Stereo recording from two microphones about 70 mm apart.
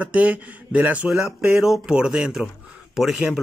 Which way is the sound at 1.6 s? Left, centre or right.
Centre.